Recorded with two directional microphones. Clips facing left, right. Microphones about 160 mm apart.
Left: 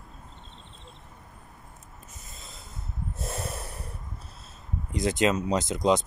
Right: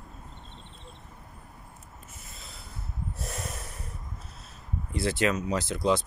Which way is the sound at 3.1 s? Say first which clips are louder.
Left 6 dB; 30° left (ahead or behind).